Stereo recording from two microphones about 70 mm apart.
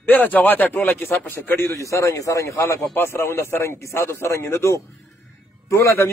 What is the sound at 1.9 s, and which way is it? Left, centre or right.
A man's voice, left.